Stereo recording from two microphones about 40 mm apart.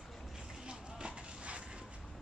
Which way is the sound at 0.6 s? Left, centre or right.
Right.